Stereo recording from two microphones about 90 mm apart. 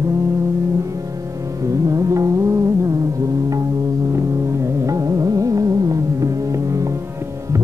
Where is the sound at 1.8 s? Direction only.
35° right (ahead or behind).